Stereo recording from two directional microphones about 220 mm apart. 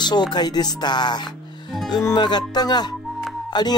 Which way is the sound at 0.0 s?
20° left (ahead or behind).